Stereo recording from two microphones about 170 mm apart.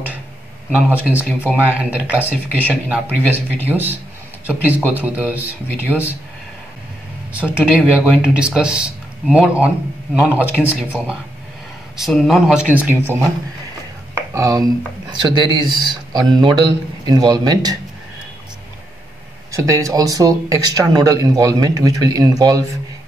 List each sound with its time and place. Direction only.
0.7 s speech: 10° right (ahead or behind)
7.3 s speech: 5° right (ahead or behind)
14.3 s speech: 20° right (ahead or behind)
19.5 s speech: 20° right (ahead or behind)